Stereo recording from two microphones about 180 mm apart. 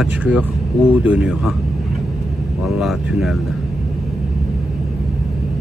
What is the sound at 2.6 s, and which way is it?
Speech, centre (ahead or behind).